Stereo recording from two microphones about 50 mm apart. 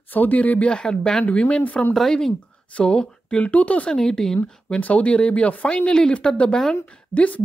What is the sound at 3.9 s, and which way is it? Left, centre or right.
Speech, centre.